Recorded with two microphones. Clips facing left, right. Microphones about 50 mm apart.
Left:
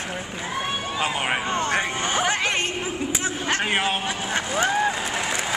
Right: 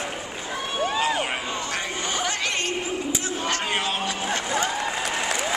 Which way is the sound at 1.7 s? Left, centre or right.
Left.